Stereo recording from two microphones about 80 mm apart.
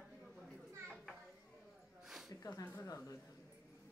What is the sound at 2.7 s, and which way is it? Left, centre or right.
Speech, left.